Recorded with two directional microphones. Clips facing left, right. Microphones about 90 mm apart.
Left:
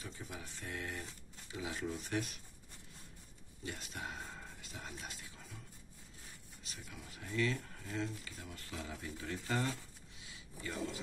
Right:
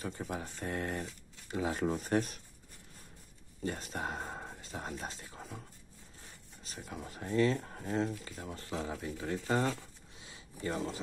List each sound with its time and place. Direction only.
0.0 s speech: 55° right (ahead or behind)
3.6 s speech: 40° right (ahead or behind)
4.6 s speech: 35° right (ahead or behind)
6.6 s speech: 40° right (ahead or behind)